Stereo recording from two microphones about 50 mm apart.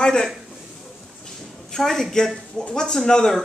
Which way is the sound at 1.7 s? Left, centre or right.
Centre.